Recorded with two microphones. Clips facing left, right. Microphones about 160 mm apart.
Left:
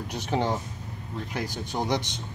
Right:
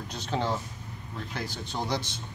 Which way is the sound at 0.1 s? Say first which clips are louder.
Left 3 dB; 15° left (ahead or behind).